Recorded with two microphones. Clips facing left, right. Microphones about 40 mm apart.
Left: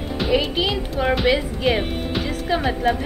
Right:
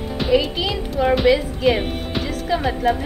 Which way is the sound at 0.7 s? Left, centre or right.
Centre.